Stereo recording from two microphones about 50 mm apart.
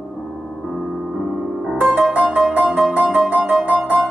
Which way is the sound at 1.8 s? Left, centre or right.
Centre.